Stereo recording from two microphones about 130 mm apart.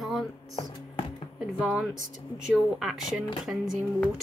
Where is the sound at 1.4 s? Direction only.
5° right (ahead or behind).